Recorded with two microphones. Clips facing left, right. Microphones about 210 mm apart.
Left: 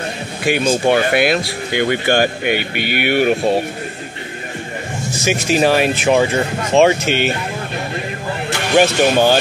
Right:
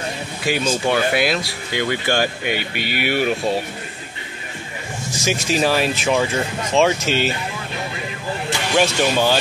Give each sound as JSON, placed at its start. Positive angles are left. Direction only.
{"t": 0.5, "sound": "speech", "side_deg": 60}
{"t": 5.2, "sound": "speech", "side_deg": 60}
{"t": 8.5, "sound": "speech", "side_deg": 60}